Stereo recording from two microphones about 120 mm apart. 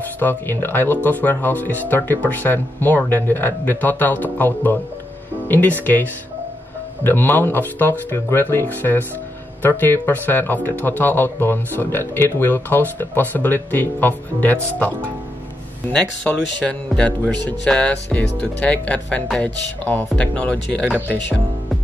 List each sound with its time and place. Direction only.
0.2 s speech: 20° left (ahead or behind)